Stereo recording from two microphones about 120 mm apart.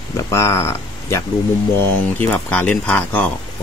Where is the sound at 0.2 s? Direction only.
25° left (ahead or behind).